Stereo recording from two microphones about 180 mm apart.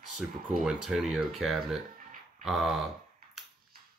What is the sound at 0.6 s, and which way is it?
Speech, centre (ahead or behind).